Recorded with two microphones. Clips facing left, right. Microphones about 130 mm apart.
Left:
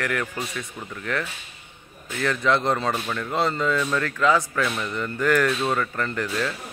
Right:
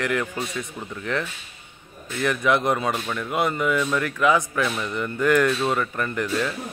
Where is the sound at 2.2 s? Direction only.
15° right (ahead or behind).